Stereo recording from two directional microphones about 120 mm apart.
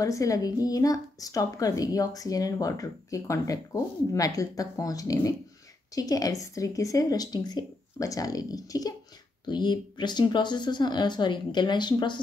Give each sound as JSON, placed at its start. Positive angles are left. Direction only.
{"t": 0.0, "sound": "a woman's voice", "side_deg": 30}